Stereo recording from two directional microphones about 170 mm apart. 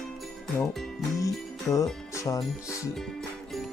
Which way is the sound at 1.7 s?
20° left (ahead or behind).